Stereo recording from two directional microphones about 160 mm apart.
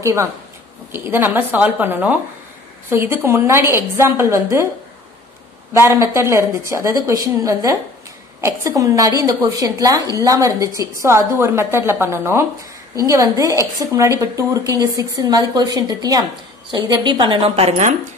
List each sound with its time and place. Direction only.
0.0 s a woman's voice: 20° right (ahead or behind)
5.7 s a woman's voice: 15° right (ahead or behind)
8.4 s a woman's voice: 15° right (ahead or behind); by 17.9 s 45° right (ahead or behind)